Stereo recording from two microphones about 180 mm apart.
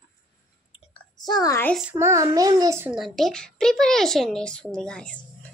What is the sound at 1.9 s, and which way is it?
A child's voice, 15° right (ahead or behind).